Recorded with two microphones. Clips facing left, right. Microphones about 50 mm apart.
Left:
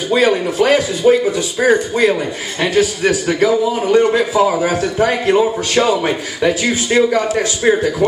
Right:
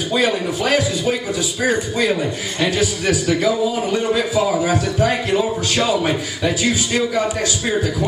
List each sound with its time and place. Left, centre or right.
0.1 s a man's voice: left
1.0 s a man's voice: left